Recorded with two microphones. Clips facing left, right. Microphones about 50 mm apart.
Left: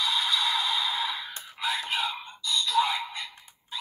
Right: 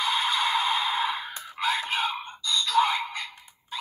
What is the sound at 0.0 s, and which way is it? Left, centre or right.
Music, right.